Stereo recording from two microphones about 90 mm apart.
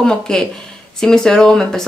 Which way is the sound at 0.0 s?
5° left (ahead or behind).